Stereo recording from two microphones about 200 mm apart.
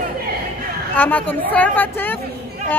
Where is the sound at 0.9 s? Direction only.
10° left (ahead or behind).